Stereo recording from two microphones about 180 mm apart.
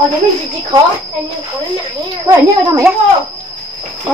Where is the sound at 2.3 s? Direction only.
15° right (ahead or behind).